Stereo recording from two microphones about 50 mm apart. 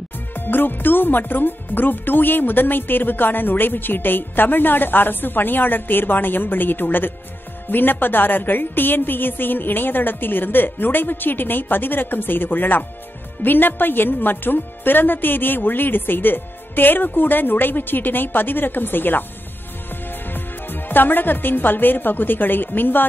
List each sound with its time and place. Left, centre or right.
0.3 s a woman's voice: left